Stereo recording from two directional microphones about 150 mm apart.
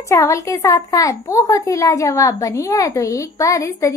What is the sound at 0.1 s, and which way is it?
A woman's voice, 20° left (ahead or behind).